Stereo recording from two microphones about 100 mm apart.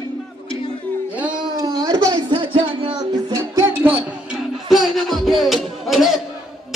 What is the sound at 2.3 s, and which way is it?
Music, 65° right (ahead or behind).